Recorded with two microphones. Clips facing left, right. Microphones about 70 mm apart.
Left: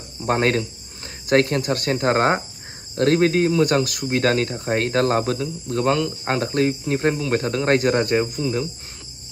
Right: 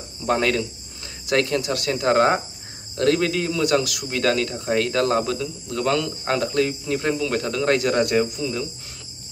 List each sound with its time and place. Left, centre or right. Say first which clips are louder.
0.2 s speech: left 1 dB; left
5.9 s speech: even; left